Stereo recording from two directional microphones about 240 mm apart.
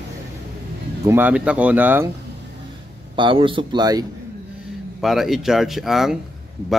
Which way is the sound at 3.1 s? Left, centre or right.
Right.